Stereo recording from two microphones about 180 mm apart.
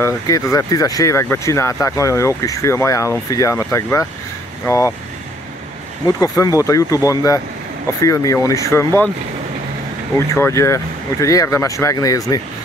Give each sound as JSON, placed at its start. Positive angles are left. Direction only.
{"t": 0.0, "sound": "speech", "side_deg": 15}
{"t": 6.0, "sound": "speech", "side_deg": 20}
{"t": 10.1, "sound": "speech", "side_deg": 15}